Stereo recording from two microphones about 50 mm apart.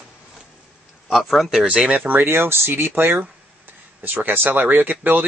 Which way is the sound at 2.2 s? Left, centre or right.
Right.